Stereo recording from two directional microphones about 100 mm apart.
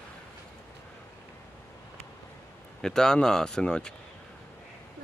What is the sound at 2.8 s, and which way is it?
Speech, 5° left (ahead or behind).